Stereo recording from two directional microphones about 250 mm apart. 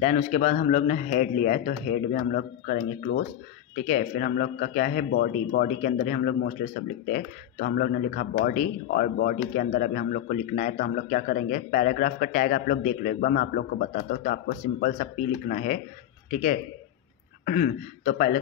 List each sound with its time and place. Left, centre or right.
0.0 s speech: left
3.0 s speech: left
3.8 s a man's voice: left